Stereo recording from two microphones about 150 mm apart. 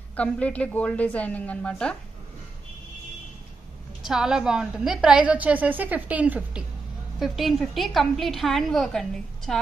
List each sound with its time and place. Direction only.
0.1 s a woman's voice: 10° left (ahead or behind)
4.0 s a woman's voice: 5° right (ahead or behind)